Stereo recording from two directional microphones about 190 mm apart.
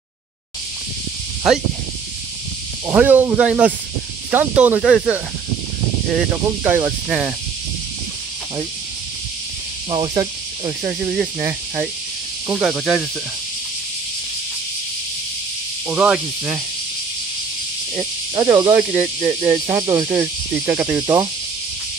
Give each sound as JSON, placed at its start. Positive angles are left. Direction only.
{"t": 2.9, "sound": "speech", "side_deg": -10}
{"t": 6.3, "sound": "speech", "side_deg": -10}
{"t": 9.8, "sound": "speech", "side_deg": -30}
{"t": 10.9, "sound": "speech", "side_deg": -10}
{"t": 15.9, "sound": "speech", "side_deg": -5}
{"t": 18.3, "sound": "speech", "side_deg": -20}